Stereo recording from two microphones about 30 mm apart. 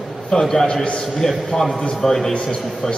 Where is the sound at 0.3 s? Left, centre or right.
Centre.